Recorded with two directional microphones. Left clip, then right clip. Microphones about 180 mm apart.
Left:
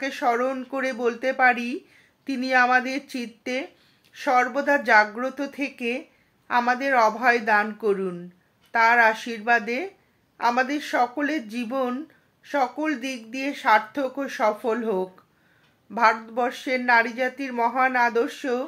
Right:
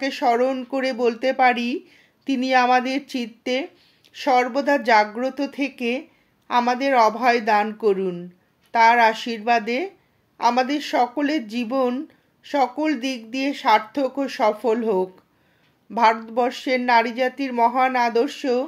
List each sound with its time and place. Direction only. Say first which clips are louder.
0.0 s a woman's voice: right 4 dB; 40° right (ahead or behind)